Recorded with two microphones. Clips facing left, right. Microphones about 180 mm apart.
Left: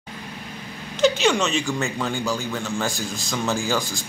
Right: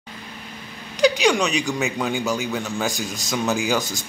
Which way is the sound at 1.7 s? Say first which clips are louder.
Right 2 dB; 20° right (ahead or behind).